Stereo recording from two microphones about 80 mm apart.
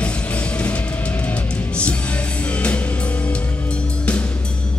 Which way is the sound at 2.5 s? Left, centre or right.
Centre.